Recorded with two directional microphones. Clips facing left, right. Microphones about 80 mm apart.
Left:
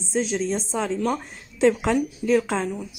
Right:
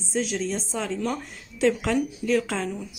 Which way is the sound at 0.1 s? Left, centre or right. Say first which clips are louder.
Left 3 dB; left.